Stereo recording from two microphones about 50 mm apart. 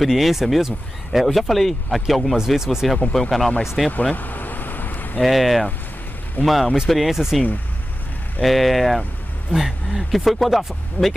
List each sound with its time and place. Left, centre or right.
0.0 s speech: centre
2.3 s speech: centre
3.2 s speech: centre
4.1 s vehicle: left
5.2 s speech: centre
8.4 s speech: centre